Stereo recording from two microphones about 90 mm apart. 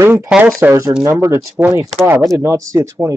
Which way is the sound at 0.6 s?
20° right (ahead or behind).